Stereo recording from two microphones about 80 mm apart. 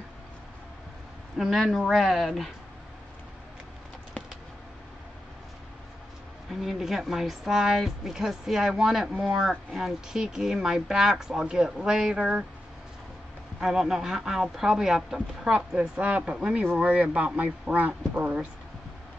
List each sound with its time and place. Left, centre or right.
1.4 s speech: centre
4.2 s a sound: centre
6.5 s speech: centre
13.6 s speech: centre